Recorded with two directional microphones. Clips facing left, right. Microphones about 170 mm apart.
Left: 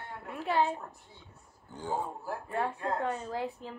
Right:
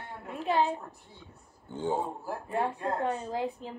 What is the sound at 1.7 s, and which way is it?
Speech, 20° right (ahead or behind).